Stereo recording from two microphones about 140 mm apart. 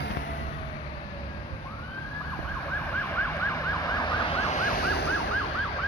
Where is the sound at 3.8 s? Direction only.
30° left (ahead or behind).